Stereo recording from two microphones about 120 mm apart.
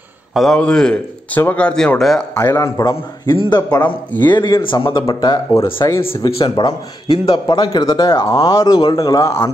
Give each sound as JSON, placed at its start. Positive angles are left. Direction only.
{"t": 0.3, "sound": "speech", "side_deg": 0}
{"t": 2.3, "sound": "a man's voice", "side_deg": 25}
{"t": 3.3, "sound": "a man's voice", "side_deg": 35}
{"t": 5.9, "sound": "a man's voice", "side_deg": 50}